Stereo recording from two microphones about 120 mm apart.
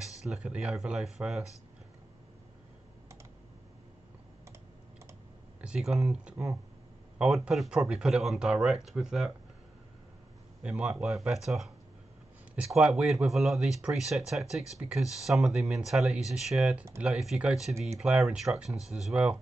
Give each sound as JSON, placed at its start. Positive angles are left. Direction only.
{"t": 0.0, "sound": "speech", "side_deg": 0}
{"t": 5.6, "sound": "speech", "side_deg": -5}
{"t": 10.6, "sound": "speech", "side_deg": -5}